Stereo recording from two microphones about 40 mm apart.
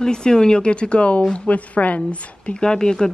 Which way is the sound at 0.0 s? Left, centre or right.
Centre.